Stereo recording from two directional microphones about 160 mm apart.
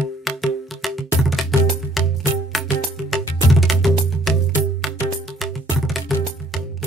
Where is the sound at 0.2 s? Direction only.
Centre (ahead or behind).